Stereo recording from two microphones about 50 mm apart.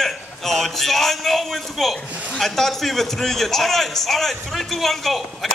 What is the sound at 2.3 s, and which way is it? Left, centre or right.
A man's voice, centre.